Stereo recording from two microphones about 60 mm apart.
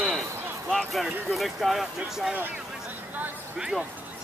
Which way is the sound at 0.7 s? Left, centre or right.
Centre.